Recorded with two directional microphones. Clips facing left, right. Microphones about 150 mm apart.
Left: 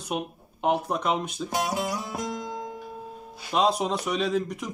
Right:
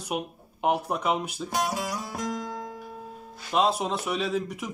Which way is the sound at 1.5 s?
20° left (ahead or behind).